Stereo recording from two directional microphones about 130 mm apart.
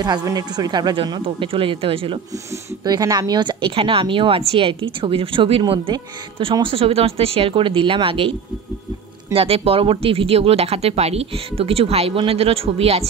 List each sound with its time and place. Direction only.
0.0 s speech: 30° right (ahead or behind)
2.8 s speech: 30° right (ahead or behind); by 13.1 s 50° right (ahead or behind)